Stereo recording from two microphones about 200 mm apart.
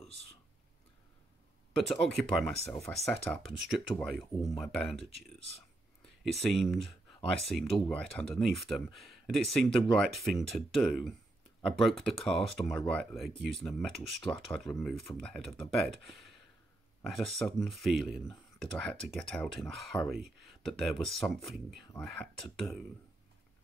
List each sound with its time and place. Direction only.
1.8 s speech: centre (ahead or behind)
6.3 s speech: centre (ahead or behind)
17.0 s speech: centre (ahead or behind)